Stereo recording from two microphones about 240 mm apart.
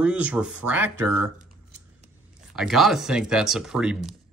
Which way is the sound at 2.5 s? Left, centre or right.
Centre.